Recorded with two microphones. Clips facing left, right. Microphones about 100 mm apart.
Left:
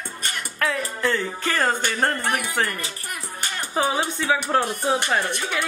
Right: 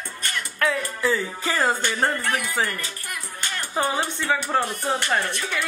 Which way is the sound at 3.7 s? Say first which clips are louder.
Left 2 dB; 5° left (ahead or behind).